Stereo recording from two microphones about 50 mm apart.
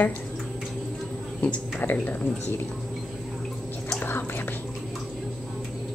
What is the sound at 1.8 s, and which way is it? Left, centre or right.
Speech, left.